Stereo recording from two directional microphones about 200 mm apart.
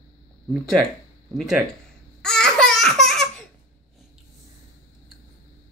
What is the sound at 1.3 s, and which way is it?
Speech, centre (ahead or behind).